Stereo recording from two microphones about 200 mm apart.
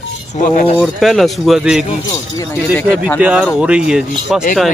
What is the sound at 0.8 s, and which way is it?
A man's voice, centre (ahead or behind).